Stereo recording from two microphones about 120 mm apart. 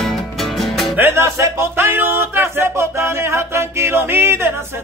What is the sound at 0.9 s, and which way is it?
Music, 20° right (ahead or behind).